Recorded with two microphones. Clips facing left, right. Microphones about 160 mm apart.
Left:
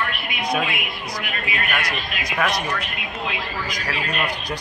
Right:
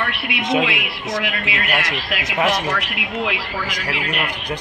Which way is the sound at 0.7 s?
75° right (ahead or behind).